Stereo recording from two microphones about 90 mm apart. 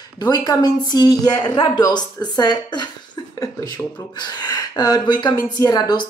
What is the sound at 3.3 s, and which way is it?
Speech, 40° left (ahead or behind).